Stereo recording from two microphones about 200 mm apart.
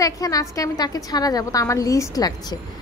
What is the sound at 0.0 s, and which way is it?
A woman's voice, 15° left (ahead or behind).